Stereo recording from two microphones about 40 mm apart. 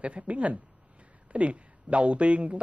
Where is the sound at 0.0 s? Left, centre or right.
Right.